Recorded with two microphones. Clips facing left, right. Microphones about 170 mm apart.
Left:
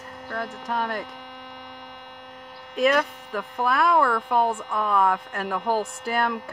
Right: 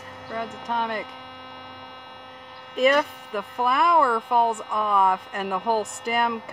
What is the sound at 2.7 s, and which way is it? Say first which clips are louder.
Speech: right 1 dB; centre (ahead or behind).